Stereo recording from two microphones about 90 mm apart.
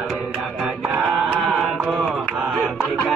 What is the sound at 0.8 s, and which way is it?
Music, 20° right (ahead or behind).